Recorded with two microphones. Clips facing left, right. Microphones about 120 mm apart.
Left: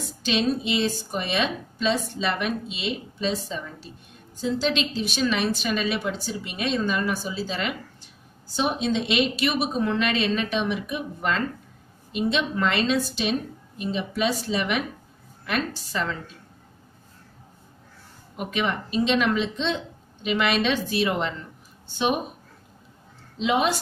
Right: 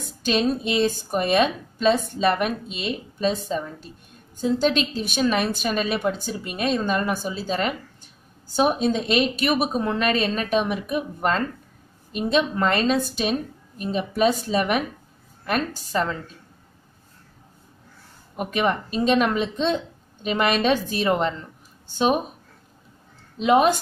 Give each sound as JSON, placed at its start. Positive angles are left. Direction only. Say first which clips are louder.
{"t": 0.0, "sound": "a woman's voice", "louder": "right 2 dB", "side_deg": -45}
{"t": 18.3, "sound": "a woman's voice", "louder": "right 4 dB", "side_deg": -45}
{"t": 23.4, "sound": "a woman's voice", "louder": "right 5 dB", "side_deg": -50}